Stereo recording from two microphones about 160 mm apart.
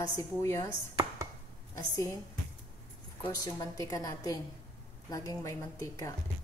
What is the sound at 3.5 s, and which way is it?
A woman's voice, 20° left (ahead or behind).